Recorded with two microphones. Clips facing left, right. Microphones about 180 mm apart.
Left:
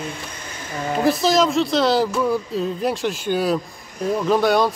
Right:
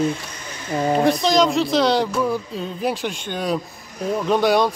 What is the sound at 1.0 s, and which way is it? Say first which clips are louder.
Speech: left 1 dB; 5° left (ahead or behind).